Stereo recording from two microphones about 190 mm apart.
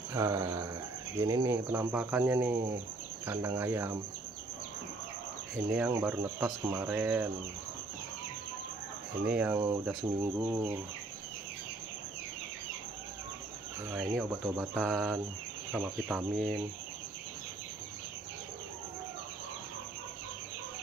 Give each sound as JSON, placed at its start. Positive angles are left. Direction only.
{"t": 0.1, "sound": "speech", "side_deg": -15}
{"t": 5.7, "sound": "speech", "side_deg": -10}
{"t": 9.2, "sound": "speech", "side_deg": -5}
{"t": 13.9, "sound": "speech", "side_deg": -5}